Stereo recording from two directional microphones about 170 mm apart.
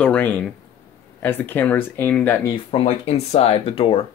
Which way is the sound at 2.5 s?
35° left (ahead or behind).